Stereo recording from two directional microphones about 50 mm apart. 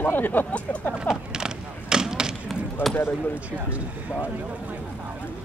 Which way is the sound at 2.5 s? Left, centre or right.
Centre.